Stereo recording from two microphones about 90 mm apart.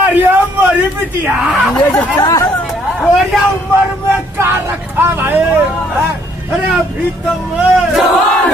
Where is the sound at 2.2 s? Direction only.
50° left (ahead or behind).